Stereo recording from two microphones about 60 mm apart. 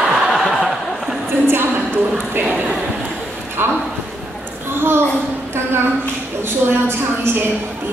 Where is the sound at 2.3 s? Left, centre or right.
Right.